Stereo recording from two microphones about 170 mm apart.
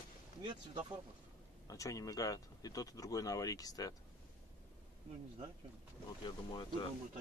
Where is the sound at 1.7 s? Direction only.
20° left (ahead or behind).